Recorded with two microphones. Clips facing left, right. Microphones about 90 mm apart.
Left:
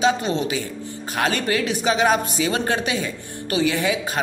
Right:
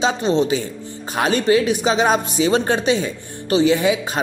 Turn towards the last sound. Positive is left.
turn(degrees=-20)  # may be behind; listen again after turning